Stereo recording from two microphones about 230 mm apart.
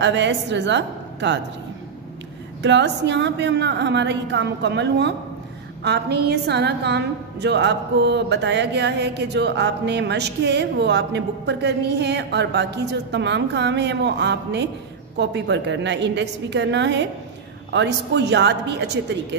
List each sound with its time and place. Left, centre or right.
0.0 s a woman's voice: right
2.6 s a woman's voice: right